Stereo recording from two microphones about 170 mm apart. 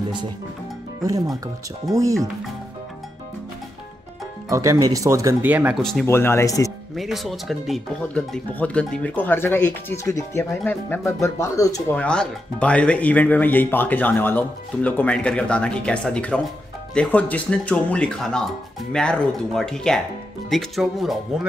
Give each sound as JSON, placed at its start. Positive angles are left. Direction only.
{"t": 1.0, "sound": "speech", "side_deg": -20}
{"t": 4.5, "sound": "speech", "side_deg": -20}
{"t": 5.8, "sound": "speech", "side_deg": 0}
{"t": 6.0, "sound": "speech", "side_deg": 15}
{"t": 7.0, "sound": "speech", "side_deg": 0}
{"t": 11.9, "sound": "speech", "side_deg": 5}